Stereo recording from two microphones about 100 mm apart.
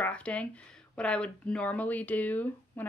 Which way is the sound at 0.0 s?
10° left (ahead or behind).